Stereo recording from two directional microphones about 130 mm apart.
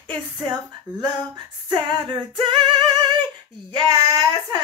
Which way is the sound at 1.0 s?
35° right (ahead or behind).